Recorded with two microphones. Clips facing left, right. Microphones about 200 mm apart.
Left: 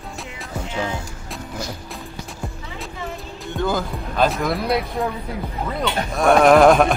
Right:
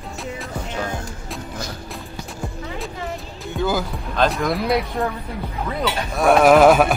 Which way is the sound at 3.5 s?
5° right (ahead or behind).